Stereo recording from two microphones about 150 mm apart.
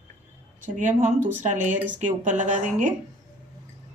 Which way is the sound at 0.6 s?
55° right (ahead or behind).